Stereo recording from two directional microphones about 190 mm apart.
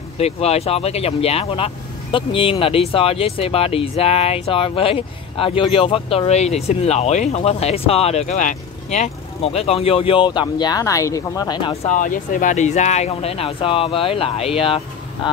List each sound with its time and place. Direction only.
0.2 s speech: 35° left (ahead or behind)
11.9 s speech: 45° left (ahead or behind)